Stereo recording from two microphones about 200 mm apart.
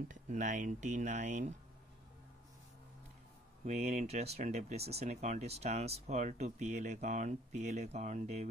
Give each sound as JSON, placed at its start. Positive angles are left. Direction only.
{"t": 0.1, "sound": "speech", "side_deg": -40}
{"t": 3.6, "sound": "speech", "side_deg": -35}